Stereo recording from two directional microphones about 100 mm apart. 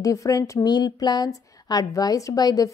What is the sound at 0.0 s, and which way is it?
A woman's voice, 35° left (ahead or behind).